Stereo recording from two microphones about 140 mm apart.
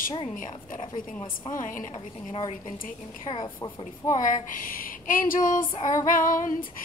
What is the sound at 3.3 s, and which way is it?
Speech, 40° left (ahead or behind).